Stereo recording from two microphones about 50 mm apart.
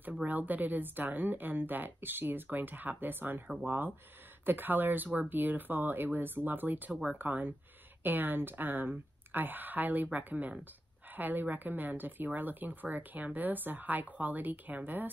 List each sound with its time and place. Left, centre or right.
0.1 s speech: right